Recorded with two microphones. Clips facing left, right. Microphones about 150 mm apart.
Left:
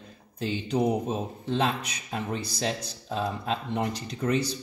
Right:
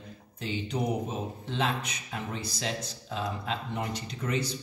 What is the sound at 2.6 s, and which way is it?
Speech, 40° left (ahead or behind).